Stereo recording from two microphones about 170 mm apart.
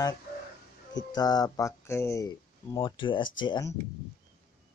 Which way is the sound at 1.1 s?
20° left (ahead or behind).